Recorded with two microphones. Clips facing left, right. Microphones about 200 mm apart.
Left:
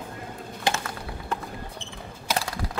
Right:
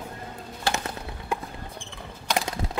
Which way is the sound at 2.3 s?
20° right (ahead or behind).